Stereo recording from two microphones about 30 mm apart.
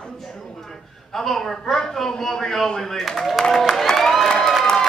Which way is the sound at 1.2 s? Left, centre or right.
Centre.